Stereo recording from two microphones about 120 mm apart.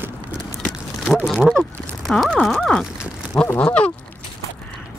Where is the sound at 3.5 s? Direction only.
10° left (ahead or behind).